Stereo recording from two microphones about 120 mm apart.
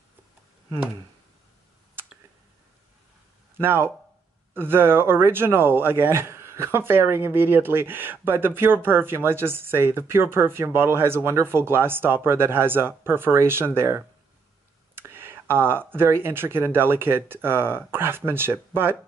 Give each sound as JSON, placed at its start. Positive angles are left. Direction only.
{"t": 3.5, "sound": "speech", "side_deg": -20}